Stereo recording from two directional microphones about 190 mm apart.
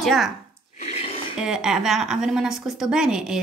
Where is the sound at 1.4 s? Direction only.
5° right (ahead or behind).